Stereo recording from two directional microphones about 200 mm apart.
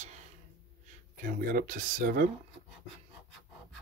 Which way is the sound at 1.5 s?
45° right (ahead or behind).